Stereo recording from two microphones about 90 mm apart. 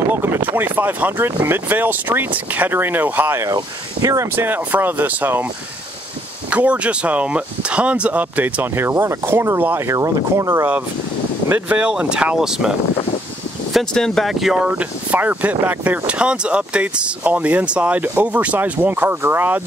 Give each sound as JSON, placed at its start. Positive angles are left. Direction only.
{"t": 0.1, "sound": "a sound", "side_deg": -25}
{"t": 0.7, "sound": "speech", "side_deg": -20}
{"t": 3.4, "sound": "speech", "side_deg": -40}
{"t": 4.4, "sound": "speech", "side_deg": -20}
{"t": 6.5, "sound": "speech", "side_deg": -15}
{"t": 9.8, "sound": "speech", "side_deg": -35}
{"t": 11.4, "sound": "speech", "side_deg": -20}
{"t": 13.7, "sound": "speech", "side_deg": 5}
{"t": 14.7, "sound": "speech", "side_deg": -15}